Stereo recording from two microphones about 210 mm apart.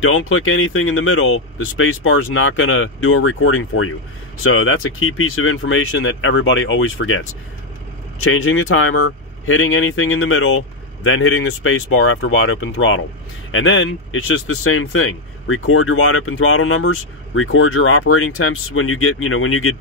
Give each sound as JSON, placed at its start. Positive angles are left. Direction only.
{"t": 0.0, "sound": "speech", "side_deg": 75}